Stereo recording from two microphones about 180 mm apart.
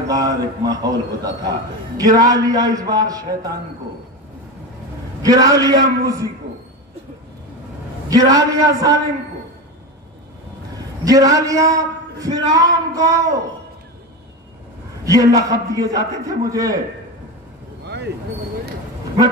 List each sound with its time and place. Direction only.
0.1 s a man's voice: 20° right (ahead or behind)
5.2 s a man's voice: 20° right (ahead or behind)
8.1 s a man's voice: 20° right (ahead or behind)
11.1 s a man's voice: 20° right (ahead or behind)
15.0 s a man's voice: 20° right (ahead or behind)
17.8 s vehicle: 70° right (ahead or behind)